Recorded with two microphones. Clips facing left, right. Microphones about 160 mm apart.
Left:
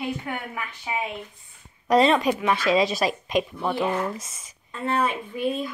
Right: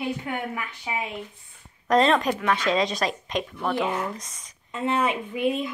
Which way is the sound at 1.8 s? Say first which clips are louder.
Left 1 dB; 5° left (ahead or behind).